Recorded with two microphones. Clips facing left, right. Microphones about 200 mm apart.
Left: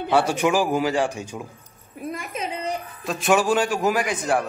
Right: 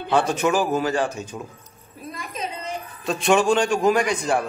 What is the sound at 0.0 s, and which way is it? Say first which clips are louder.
A man's voice: left 1 dB; 10° left (ahead or behind).